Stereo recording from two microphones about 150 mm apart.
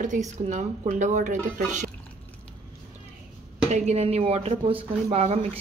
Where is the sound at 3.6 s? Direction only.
50° right (ahead or behind).